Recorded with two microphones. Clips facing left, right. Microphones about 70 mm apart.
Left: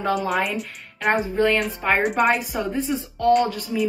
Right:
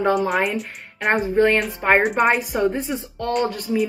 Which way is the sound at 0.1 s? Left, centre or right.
Centre.